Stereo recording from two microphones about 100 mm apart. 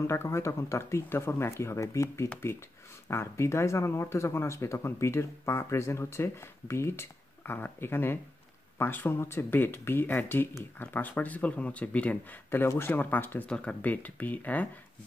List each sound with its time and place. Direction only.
0.0 s speech: 25° left (ahead or behind)